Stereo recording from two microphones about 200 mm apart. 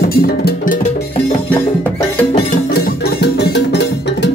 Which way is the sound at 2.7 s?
55° left (ahead or behind).